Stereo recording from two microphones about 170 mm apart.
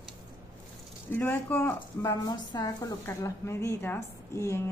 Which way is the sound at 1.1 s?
10° left (ahead or behind).